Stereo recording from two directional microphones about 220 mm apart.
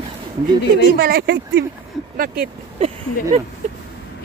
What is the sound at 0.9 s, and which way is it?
Speech, 40° right (ahead or behind).